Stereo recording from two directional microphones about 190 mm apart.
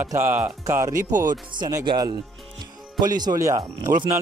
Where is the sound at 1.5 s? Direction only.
20° right (ahead or behind).